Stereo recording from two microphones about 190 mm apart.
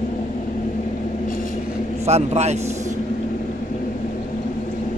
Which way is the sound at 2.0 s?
35° right (ahead or behind).